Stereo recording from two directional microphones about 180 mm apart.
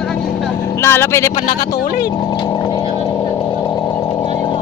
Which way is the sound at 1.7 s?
55° left (ahead or behind).